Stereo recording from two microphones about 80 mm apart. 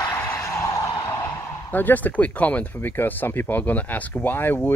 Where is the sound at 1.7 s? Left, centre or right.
Left.